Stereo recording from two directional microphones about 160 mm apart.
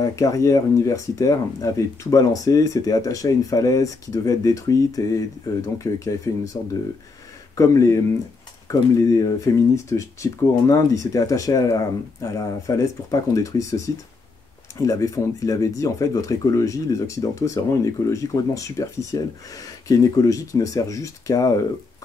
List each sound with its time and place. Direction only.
0.0 s speech: 20° left (ahead or behind)